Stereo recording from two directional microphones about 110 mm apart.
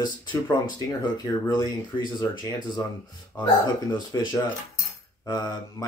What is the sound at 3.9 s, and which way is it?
Speech, 40° left (ahead or behind).